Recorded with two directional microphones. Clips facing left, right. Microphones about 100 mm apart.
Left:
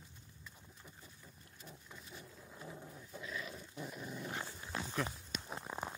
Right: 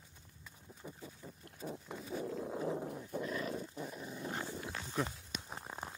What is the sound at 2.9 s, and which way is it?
Dog, 50° right (ahead or behind).